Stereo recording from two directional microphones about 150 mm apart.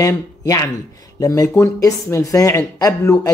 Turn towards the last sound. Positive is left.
turn(degrees=20)  # may be behind; listen again after turning